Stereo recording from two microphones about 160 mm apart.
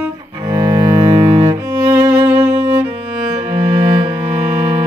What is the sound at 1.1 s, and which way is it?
Cello, 35° right (ahead or behind).